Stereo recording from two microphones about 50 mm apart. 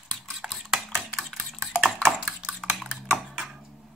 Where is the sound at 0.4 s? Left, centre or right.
Centre.